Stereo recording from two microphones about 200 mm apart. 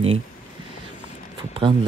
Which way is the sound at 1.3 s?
25° right (ahead or behind).